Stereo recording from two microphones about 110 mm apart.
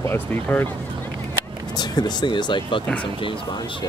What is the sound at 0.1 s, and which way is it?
Speech, 20° left (ahead or behind).